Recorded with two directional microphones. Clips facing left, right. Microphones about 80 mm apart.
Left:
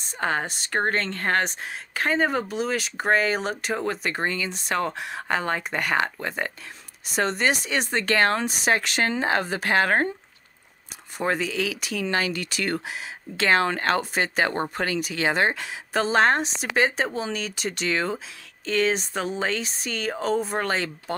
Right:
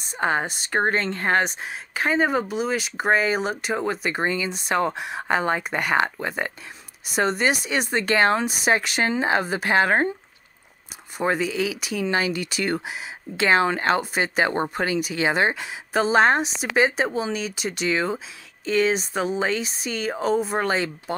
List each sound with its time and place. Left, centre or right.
0.1 s speech: centre
11.1 s speech: centre